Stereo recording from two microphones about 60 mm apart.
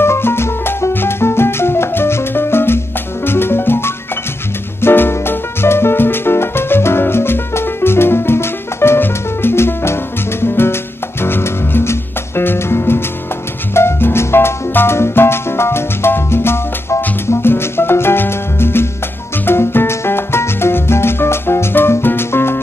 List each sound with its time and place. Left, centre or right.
0.0 s music: left